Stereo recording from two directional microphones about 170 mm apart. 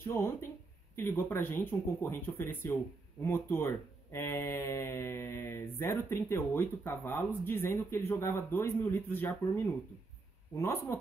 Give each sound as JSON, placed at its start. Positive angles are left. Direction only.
{"t": 0.0, "sound": "speech", "side_deg": 15}